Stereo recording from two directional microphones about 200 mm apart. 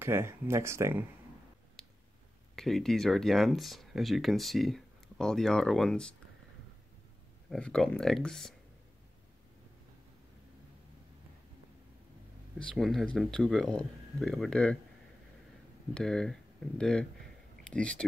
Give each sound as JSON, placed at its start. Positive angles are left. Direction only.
{"t": 0.0, "sound": "speech", "side_deg": -10}
{"t": 1.8, "sound": "finger snapping", "side_deg": 5}
{"t": 2.5, "sound": "speech", "side_deg": 0}
{"t": 7.4, "sound": "speech", "side_deg": 5}
{"t": 12.5, "sound": "speech", "side_deg": 0}
{"t": 15.9, "sound": "speech", "side_deg": 5}